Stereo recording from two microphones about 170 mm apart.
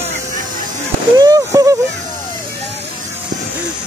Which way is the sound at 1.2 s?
20° right (ahead or behind).